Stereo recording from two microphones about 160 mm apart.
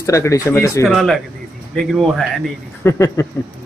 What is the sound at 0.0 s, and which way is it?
Speech, 20° left (ahead or behind).